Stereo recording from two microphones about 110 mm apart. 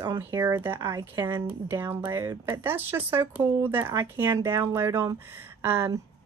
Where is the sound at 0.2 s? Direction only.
20° right (ahead or behind).